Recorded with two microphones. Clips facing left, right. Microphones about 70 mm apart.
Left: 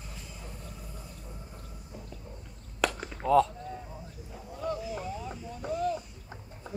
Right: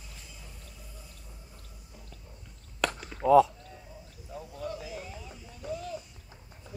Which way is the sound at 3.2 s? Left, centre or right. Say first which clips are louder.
Right 3 dB; centre.